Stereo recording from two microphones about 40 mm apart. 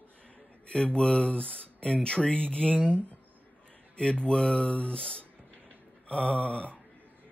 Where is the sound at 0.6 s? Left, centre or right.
Left.